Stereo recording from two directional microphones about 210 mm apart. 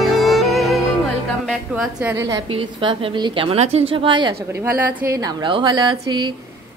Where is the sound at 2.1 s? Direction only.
20° right (ahead or behind).